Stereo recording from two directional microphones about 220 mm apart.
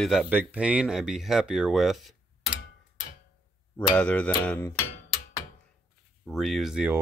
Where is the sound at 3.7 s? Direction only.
5° left (ahead or behind).